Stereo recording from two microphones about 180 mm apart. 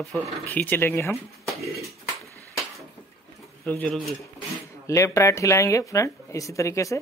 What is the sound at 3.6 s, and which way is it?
Speech, 5° left (ahead or behind).